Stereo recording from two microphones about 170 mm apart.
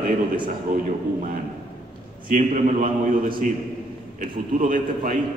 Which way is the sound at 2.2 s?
50° right (ahead or behind).